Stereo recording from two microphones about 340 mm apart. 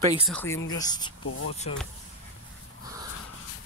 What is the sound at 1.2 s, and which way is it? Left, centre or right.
Speech, left.